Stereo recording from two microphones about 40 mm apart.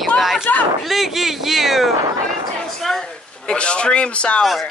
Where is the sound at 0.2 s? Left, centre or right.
Centre.